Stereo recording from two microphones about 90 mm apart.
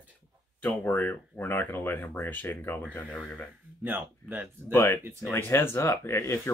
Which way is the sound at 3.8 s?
20° right (ahead or behind).